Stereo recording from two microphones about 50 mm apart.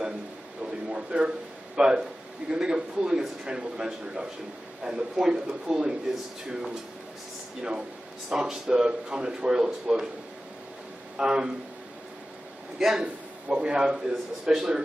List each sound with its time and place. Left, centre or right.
0.8 s a sound: right
1.8 s a man's voice: centre
8.3 s a man's voice: centre
11.1 s a man's voice: centre
12.7 s a man's voice: centre